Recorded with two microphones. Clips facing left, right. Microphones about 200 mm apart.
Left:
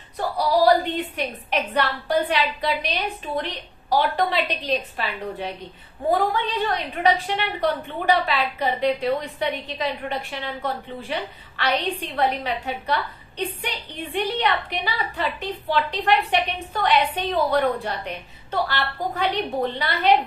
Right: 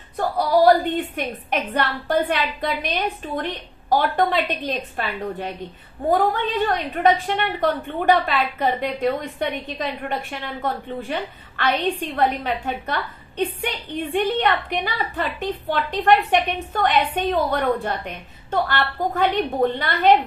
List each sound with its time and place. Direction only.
0.4 s a woman's voice: 50° right (ahead or behind)